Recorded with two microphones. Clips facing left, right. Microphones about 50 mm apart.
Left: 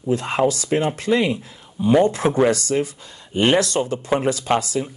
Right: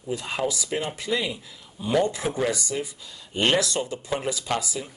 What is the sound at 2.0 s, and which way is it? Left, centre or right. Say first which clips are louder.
Speech: left 8 dB; left.